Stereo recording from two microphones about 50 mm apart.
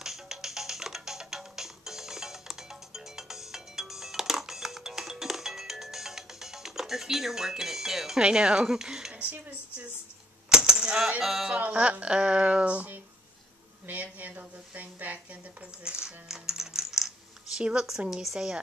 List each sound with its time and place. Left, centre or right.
0.0 s music: centre
8.2 s speech: centre
9.1 s a woman's voice: right
10.5 s coin: centre
11.1 s speech: centre
11.5 s speech: right
13.8 s a woman's voice: right
15.8 s coin: centre
17.6 s speech: centre